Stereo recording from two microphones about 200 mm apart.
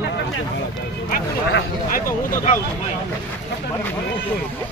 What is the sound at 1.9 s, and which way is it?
Speech, 45° left (ahead or behind).